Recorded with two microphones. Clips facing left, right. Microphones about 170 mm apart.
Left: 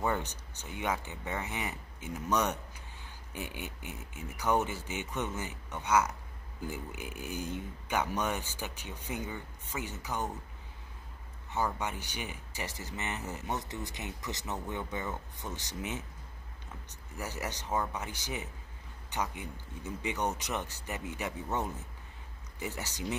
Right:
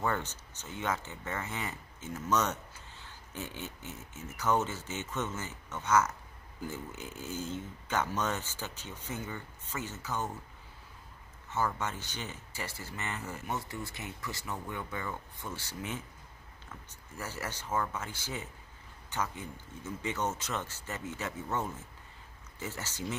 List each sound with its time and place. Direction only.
0.0 s speech: 15° left (ahead or behind)
11.5 s speech: 15° left (ahead or behind)
17.2 s a man's voice: 15° left (ahead or behind)